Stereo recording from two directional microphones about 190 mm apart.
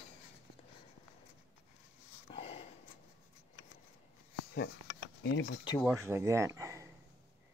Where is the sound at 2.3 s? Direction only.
30° left (ahead or behind).